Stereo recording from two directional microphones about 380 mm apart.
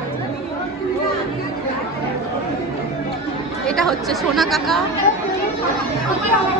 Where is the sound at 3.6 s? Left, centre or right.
Centre.